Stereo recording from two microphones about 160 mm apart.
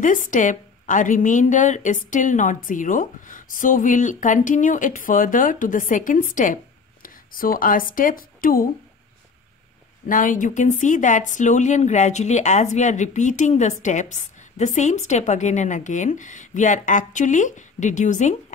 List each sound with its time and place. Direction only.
0.0 s a woman's voice: 55° left (ahead or behind)
10.0 s speech: 55° left (ahead or behind)